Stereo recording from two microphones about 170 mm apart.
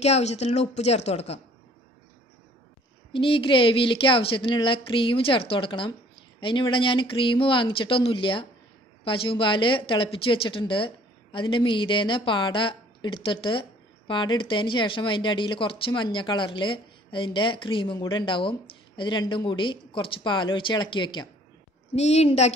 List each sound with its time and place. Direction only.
0.0 s a woman's voice: 40° left (ahead or behind)
3.1 s a woman's voice: 30° left (ahead or behind)
21.9 s a woman's voice: 40° left (ahead or behind)